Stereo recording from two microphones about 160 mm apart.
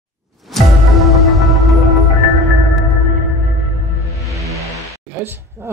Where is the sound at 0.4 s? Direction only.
Centre (ahead or behind).